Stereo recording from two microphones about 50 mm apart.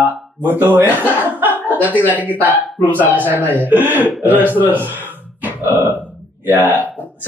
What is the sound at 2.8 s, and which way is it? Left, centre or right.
Speech, left.